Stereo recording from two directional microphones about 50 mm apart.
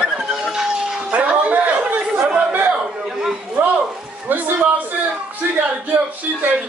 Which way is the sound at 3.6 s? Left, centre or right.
Right.